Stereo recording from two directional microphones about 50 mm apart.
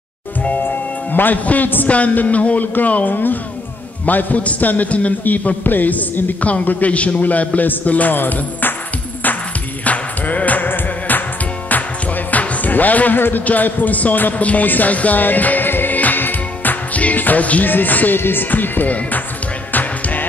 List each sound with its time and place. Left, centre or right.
0.6 s a man's voice: left
9.8 s music: left
13.2 s a man's voice: left
19.7 s music: left